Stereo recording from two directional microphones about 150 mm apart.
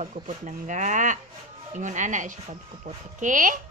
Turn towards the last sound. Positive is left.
turn(degrees=-60)  # may be behind; listen again after turning